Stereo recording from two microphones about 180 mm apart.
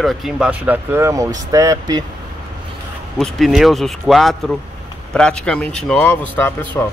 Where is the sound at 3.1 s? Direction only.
Centre (ahead or behind).